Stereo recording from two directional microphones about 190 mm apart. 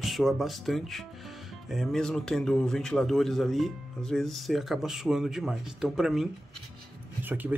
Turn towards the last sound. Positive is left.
turn(degrees=-10)  # may be behind; listen again after turning